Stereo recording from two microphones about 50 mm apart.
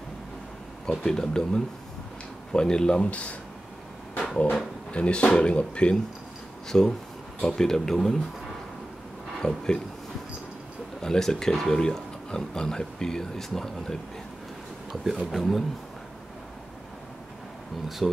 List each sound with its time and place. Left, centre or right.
0.8 s speech: centre
4.9 s speech: left
6.7 s speech: centre
9.4 s speech: centre
11.0 s speech: centre
15.3 s speech: centre
17.8 s speech: centre